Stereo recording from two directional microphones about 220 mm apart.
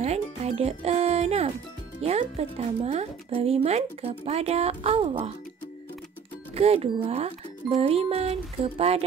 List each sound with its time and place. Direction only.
0.0 s speech: 30° right (ahead or behind)
6.5 s speech: 25° right (ahead or behind)